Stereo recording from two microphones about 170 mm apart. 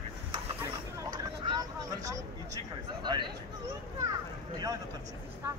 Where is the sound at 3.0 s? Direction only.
25° right (ahead or behind).